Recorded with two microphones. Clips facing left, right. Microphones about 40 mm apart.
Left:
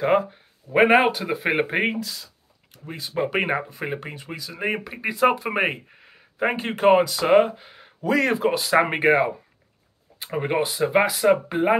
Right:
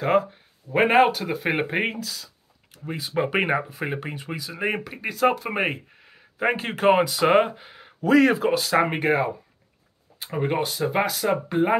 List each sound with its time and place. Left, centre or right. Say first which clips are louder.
0.0 s speech: left 1 dB; centre
2.8 s speech: right 1 dB; centre